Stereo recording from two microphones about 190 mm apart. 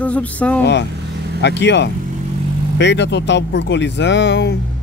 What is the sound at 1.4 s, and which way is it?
Speech, 65° left (ahead or behind).